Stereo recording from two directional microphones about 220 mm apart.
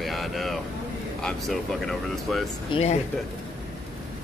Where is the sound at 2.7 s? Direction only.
30° left (ahead or behind).